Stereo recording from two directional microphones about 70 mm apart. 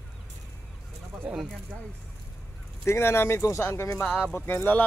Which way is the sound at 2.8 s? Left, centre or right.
Left.